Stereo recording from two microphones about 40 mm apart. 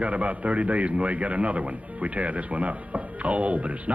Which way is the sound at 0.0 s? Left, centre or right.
Right.